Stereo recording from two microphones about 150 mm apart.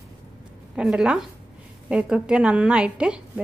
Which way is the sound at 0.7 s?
5° right (ahead or behind).